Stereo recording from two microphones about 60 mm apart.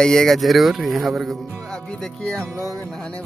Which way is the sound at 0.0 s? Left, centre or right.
Centre.